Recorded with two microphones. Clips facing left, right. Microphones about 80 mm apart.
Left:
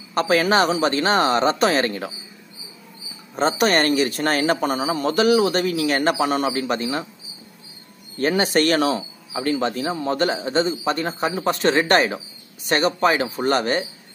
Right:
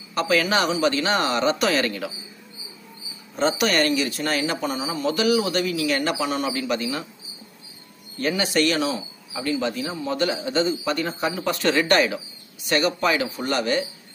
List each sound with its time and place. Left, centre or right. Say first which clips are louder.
0.1 s speech: left 3 dB; left
3.3 s speech: left 2 dB; left
8.2 s speech: left 3 dB; left